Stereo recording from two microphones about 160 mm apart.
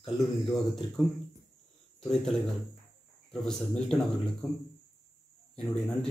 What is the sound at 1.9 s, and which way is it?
Speech, 5° left (ahead or behind).